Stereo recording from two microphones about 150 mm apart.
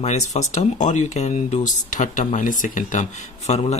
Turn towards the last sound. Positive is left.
turn(degrees=50)  # may be behind; listen again after turning